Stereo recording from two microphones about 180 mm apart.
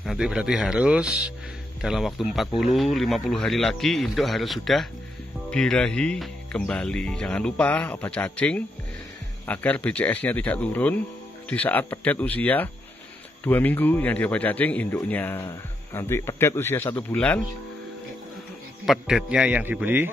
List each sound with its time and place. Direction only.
0.0 s speech: centre (ahead or behind)
18.9 s a man's voice: 5° right (ahead or behind)